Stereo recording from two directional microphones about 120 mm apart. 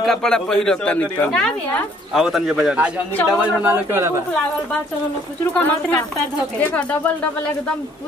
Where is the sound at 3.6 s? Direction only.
20° right (ahead or behind).